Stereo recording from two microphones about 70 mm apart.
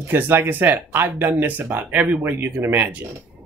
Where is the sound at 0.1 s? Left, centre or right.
Right.